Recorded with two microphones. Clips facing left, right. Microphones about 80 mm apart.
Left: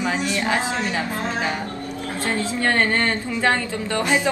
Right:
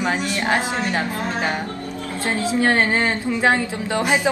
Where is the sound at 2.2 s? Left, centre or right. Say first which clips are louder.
Right 3 dB; centre.